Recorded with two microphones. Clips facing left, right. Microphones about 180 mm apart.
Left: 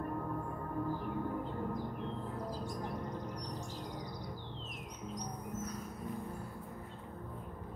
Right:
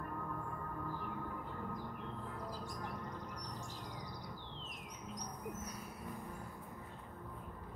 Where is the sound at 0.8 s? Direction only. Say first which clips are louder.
Left 7 dB; 25° left (ahead or behind).